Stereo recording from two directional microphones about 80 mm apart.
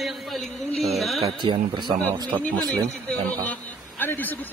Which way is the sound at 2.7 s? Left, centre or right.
Centre.